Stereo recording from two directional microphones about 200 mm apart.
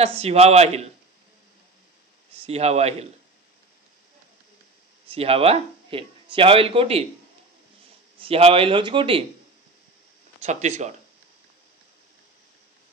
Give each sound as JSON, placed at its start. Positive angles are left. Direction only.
{"t": 0.0, "sound": "a man's voice", "side_deg": -30}
{"t": 2.4, "sound": "a man's voice", "side_deg": -30}
{"t": 5.0, "sound": "speech", "side_deg": -30}
{"t": 8.2, "sound": "speech", "side_deg": -30}
{"t": 10.4, "sound": "a man's voice", "side_deg": -35}